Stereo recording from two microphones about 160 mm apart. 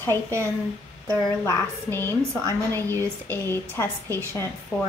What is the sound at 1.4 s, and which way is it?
A woman's voice, 15° left (ahead or behind).